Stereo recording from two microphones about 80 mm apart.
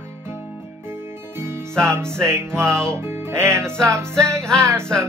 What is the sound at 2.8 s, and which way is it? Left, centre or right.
Music, right.